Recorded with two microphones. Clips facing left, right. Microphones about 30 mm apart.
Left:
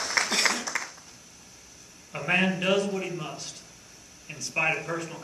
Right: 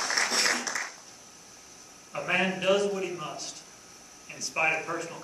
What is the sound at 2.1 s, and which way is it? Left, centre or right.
A man's voice, centre.